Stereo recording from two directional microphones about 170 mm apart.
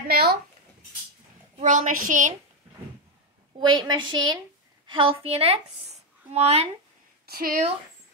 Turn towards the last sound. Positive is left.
turn(degrees=-60)  # may be behind; listen again after turning